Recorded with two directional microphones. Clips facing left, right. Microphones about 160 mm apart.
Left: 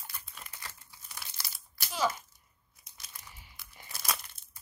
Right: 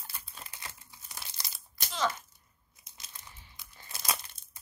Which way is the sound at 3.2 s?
25° right (ahead or behind).